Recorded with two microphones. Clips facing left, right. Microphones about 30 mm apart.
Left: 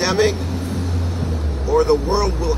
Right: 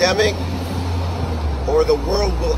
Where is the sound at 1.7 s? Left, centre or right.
Right.